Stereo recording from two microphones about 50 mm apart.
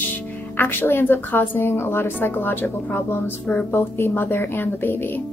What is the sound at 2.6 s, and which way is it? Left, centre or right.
A woman's voice, left.